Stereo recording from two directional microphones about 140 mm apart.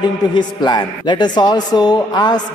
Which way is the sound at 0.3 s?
30° left (ahead or behind).